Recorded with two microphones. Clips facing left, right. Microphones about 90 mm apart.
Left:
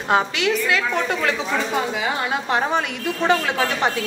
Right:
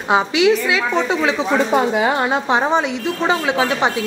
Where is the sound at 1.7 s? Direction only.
35° right (ahead or behind).